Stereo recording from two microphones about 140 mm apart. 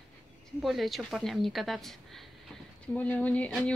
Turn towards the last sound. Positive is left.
turn(degrees=10)  # may be behind; listen again after turning